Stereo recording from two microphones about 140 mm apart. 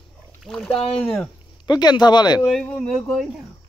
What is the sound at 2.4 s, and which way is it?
Speech, centre (ahead or behind).